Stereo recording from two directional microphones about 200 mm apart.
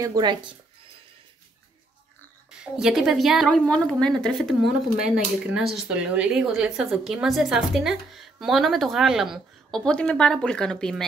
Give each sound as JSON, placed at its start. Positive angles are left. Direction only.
{"t": 0.0, "sound": "speech", "side_deg": -20}
{"t": 2.5, "sound": "speech", "side_deg": -5}